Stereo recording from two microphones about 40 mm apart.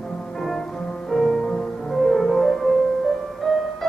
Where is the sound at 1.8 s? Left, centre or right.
Centre.